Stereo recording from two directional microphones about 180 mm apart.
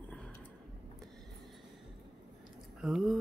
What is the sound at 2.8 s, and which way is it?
Speech, centre (ahead or behind).